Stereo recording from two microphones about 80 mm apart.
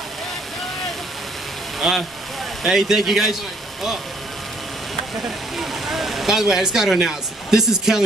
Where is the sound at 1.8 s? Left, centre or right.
Centre.